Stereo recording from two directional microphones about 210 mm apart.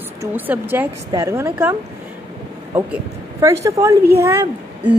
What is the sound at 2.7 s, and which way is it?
A woman's voice, 10° right (ahead or behind).